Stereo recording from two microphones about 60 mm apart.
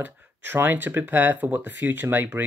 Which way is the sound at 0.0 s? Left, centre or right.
Right.